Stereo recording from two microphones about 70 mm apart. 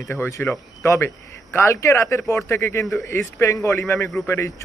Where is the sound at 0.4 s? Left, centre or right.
Left.